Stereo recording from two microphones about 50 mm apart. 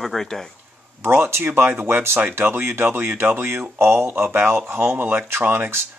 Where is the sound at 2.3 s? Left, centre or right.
Right.